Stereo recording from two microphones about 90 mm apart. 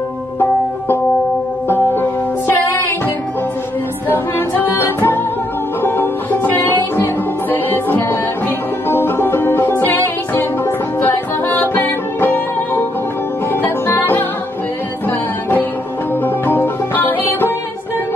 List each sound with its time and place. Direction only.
1.7 s music: 25° left (ahead or behind)
4.1 s music: 25° left (ahead or behind)
16.4 s music: 20° left (ahead or behind)